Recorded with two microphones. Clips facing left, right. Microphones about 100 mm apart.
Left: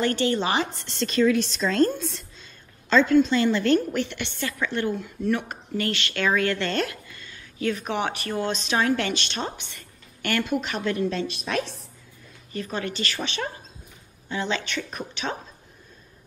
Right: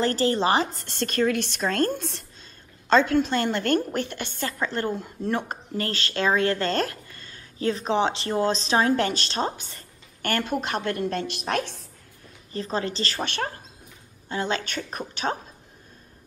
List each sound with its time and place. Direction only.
0.0 s speech: 35° right (ahead or behind); by 11.6 s 55° right (ahead or behind)
12.5 s speech: 30° right (ahead or behind)
13.2 s speech: 50° right (ahead or behind)